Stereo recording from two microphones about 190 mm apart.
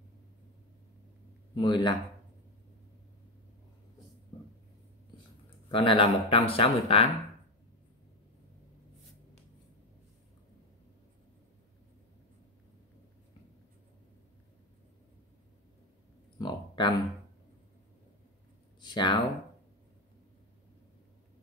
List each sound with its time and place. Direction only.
1.5 s speech: 25° left (ahead or behind)
5.7 s speech: 25° left (ahead or behind)
16.3 s speech: 20° left (ahead or behind)
18.8 s a sound: 25° left (ahead or behind)